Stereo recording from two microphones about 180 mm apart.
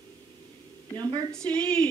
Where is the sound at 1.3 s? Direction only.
5° left (ahead or behind).